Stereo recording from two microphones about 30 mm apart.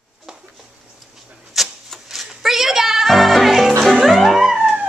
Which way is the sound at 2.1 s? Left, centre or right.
Centre.